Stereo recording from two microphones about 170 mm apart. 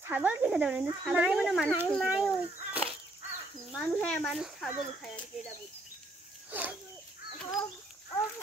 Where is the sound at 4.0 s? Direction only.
5° left (ahead or behind).